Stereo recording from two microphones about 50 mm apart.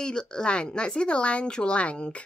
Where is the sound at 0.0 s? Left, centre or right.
Centre.